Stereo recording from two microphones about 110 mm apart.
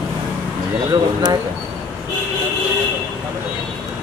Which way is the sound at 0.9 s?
45° right (ahead or behind).